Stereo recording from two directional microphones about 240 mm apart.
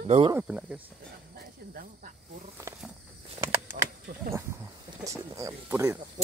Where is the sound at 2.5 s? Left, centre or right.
Centre.